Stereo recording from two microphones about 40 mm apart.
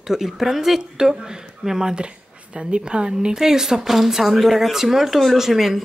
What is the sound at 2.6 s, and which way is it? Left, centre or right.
Speech, right.